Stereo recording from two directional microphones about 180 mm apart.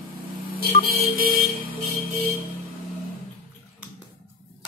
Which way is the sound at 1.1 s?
55° right (ahead or behind).